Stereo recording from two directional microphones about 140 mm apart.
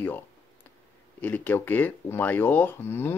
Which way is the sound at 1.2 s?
15° left (ahead or behind).